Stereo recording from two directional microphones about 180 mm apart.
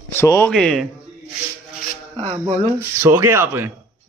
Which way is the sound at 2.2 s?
35° right (ahead or behind).